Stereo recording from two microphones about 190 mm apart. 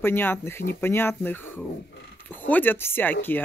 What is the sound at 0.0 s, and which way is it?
Speech, 10° left (ahead or behind).